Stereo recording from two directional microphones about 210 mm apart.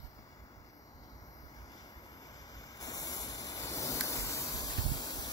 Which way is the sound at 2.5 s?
15° left (ahead or behind).